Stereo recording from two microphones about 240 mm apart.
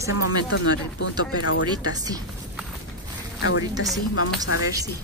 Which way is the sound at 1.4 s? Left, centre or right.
Left.